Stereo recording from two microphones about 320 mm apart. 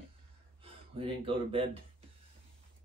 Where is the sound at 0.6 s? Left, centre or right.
Centre.